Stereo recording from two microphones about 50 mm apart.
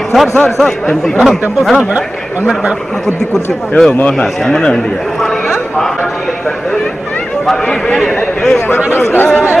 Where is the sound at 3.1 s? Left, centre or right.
Left.